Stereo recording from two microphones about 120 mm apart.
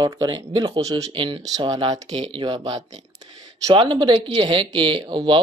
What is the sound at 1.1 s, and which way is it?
A man's voice, 45° right (ahead or behind).